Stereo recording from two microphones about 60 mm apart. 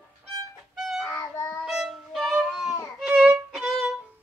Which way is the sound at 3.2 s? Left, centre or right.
Centre.